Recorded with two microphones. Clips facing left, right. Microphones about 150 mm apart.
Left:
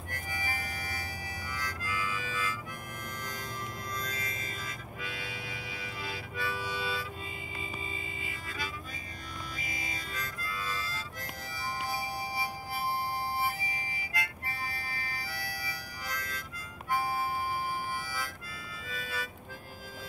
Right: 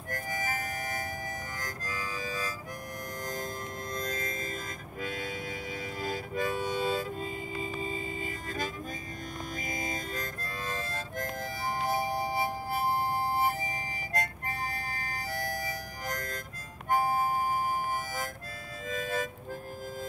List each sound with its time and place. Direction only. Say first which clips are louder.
0.1 s music: right 5 dB; 45° right (ahead or behind)
1.6 s harmonica: left 1 dB; 40° right (ahead or behind)
3.9 s music: right 4 dB; 45° right (ahead or behind)
6.0 s harmonica: right 6 dB; 45° right (ahead or behind)
7.5 s music: right 6 dB; 45° right (ahead or behind)
9.6 s harmonica: right 6 dB; 45° right (ahead or behind)
16.9 s music: right 4 dB; 45° right (ahead or behind)